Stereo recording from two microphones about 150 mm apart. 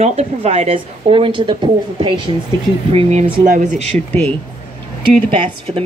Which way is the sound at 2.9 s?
45° right (ahead or behind).